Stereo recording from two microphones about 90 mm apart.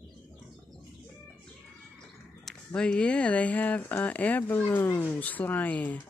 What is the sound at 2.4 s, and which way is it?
Speech, 10° left (ahead or behind).